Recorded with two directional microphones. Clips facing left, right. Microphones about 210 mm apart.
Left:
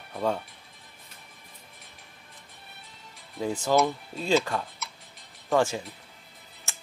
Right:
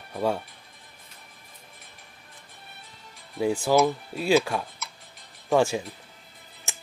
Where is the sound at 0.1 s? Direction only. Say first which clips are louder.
Right 2 dB; 10° right (ahead or behind).